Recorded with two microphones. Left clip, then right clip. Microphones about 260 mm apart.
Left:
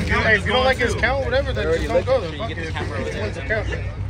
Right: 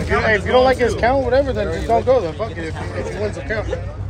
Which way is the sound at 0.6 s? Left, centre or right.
Right.